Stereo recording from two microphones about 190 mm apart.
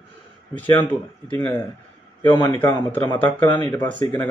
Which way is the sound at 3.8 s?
20° left (ahead or behind).